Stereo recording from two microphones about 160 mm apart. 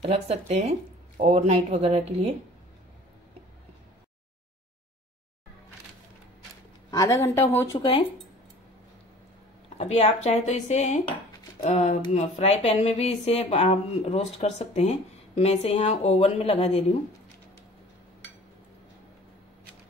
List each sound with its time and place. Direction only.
0.0 s speech: 40° right (ahead or behind)
6.9 s speech: 20° left (ahead or behind)
9.8 s speech: 45° left (ahead or behind)